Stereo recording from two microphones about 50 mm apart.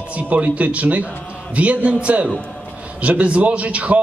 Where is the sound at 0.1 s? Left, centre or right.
Right.